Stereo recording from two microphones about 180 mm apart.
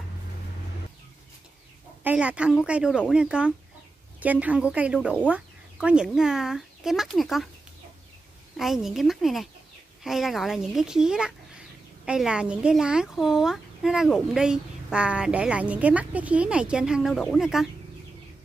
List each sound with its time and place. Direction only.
2.0 s a woman's voice: 5° right (ahead or behind)
8.5 s speech: centre (ahead or behind)